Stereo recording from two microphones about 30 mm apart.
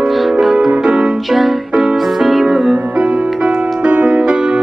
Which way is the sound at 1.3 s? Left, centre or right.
Centre.